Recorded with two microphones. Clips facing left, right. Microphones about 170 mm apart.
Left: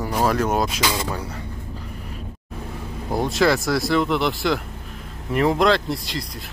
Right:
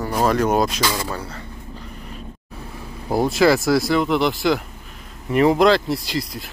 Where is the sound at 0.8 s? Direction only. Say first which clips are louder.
Right 1 dB; 20° left (ahead or behind).